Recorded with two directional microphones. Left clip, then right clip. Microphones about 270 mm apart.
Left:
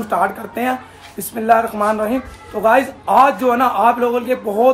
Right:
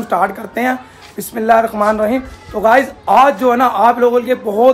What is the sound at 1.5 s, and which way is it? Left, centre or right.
Speech, right.